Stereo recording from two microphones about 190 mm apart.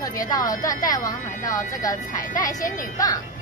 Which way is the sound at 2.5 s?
45° left (ahead or behind).